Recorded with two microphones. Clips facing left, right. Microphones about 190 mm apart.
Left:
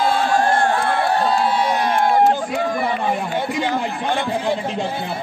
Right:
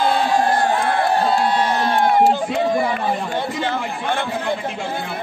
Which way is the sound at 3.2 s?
15° left (ahead or behind).